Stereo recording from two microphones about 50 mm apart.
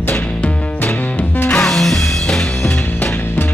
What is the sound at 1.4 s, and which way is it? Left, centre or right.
Music, left.